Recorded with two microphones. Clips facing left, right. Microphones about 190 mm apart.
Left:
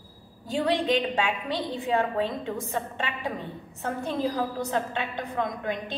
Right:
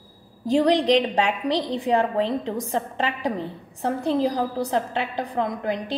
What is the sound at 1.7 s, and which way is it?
A woman's voice, 35° right (ahead or behind).